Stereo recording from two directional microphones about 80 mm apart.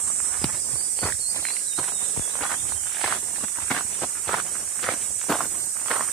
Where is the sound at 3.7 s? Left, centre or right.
Centre.